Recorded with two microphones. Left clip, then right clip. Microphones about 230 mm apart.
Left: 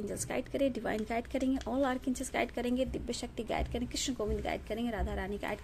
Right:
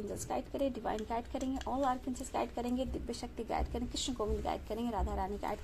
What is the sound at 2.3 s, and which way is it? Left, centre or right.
A woman's voice, left.